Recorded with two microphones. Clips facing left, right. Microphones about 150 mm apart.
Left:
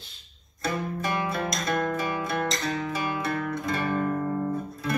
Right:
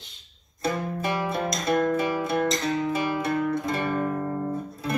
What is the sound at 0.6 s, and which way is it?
Music, 25° right (ahead or behind).